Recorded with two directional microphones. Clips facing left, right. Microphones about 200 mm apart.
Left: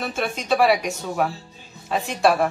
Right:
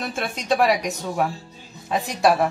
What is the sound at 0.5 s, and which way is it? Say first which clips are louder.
Speech: left 1 dB; centre (ahead or behind).